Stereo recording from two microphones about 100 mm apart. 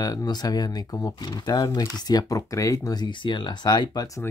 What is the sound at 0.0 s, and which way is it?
Speech, 40° left (ahead or behind).